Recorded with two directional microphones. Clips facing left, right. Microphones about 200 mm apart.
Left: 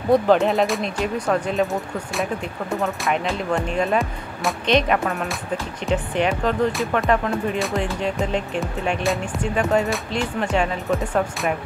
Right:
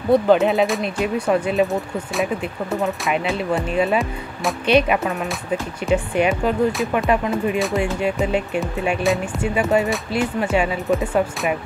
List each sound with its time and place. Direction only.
0.1 s speech: centre (ahead or behind)
2.8 s speech: centre (ahead or behind)